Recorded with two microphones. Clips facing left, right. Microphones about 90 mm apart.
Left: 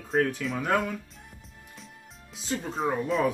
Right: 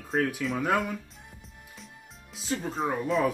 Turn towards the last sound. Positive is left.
turn(degrees=0)  # may be behind; listen again after turning